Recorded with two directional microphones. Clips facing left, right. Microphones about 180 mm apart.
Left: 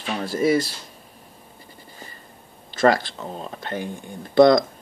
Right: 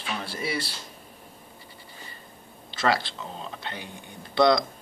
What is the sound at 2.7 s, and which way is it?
Speech, 50° left (ahead or behind).